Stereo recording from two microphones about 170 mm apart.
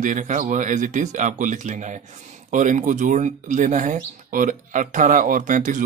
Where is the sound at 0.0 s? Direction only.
45° right (ahead or behind).